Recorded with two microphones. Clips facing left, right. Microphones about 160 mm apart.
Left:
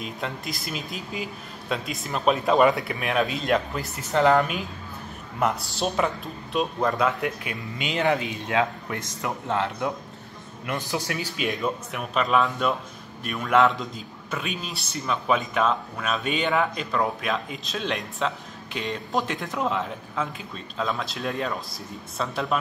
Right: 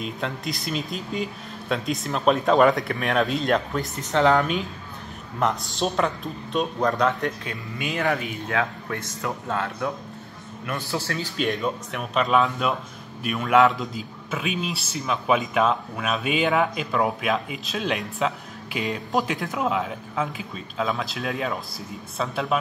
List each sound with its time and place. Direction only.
0.0 s a man's voice: centre (ahead or behind)
7.7 s a man's voice: 20° left (ahead or behind)
11.4 s a man's voice: centre (ahead or behind)